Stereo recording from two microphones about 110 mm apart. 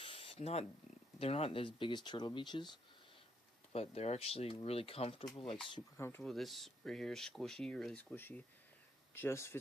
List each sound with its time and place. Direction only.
0.0 s wild animals: 60° left (ahead or behind); by 0.7 s 75° left (ahead or behind)
1.2 s speech: 60° left (ahead or behind); by 2.7 s 45° left (ahead or behind)
3.7 s speech: 70° left (ahead or behind)
5.2 s speech: 5° left (ahead or behind)
5.9 s speech: 20° left (ahead or behind)
6.2 s speech: centre (ahead or behind); by 9.6 s 25° left (ahead or behind)